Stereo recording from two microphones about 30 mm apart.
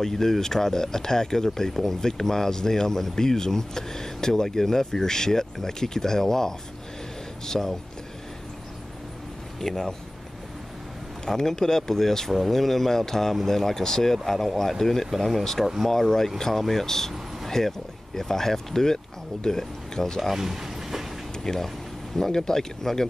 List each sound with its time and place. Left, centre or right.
0.0 s speech: centre
9.6 s speech: centre
11.2 s speech: centre
15.0 s speech: centre
15.9 s speech: centre
20.2 s a sound: centre
21.4 s speech: centre